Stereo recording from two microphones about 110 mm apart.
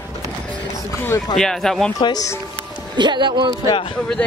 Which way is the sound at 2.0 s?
35° left (ahead or behind).